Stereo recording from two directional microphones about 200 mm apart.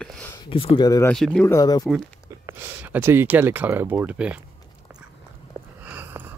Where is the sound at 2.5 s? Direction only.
10° right (ahead or behind).